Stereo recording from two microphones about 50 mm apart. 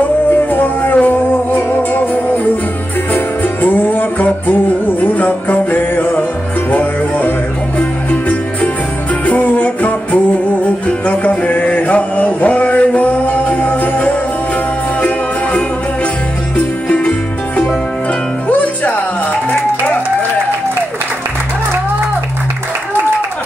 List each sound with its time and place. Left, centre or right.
0.3 s music: left
3.6 s music: left
9.2 s music: left
15.0 s jingle bell: left
16.5 s music: left
18.5 s music: left